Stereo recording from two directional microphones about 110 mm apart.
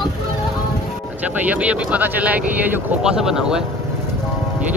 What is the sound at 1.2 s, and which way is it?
Speech, 15° right (ahead or behind).